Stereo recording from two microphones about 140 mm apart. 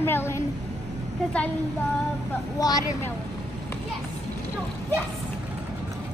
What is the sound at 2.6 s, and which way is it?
Speech, 25° left (ahead or behind).